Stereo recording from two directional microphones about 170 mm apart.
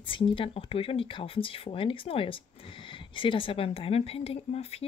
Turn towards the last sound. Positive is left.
turn(degrees=35)  # may be behind; listen again after turning